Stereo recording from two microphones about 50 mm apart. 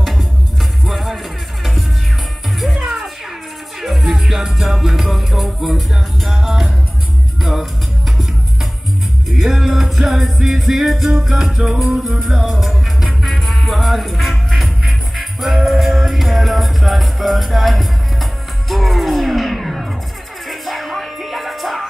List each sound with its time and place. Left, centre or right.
0.8 s music: centre
2.7 s music: centre
9.4 s music: centre